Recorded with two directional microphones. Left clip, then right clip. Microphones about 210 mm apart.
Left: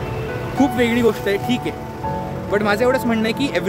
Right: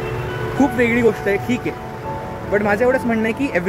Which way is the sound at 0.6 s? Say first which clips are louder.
Right 1 dB; 15° left (ahead or behind).